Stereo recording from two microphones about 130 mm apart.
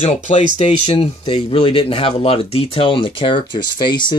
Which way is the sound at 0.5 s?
45° left (ahead or behind).